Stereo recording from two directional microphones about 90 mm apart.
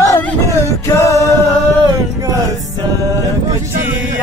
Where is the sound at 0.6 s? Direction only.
35° left (ahead or behind).